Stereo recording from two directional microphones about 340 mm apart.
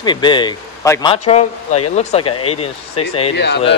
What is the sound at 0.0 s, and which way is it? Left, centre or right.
Speech, centre.